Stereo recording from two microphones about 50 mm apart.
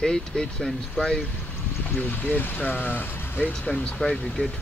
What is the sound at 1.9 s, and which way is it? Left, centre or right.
Speech, left.